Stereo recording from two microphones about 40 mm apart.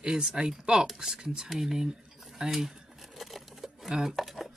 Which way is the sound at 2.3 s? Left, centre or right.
Centre.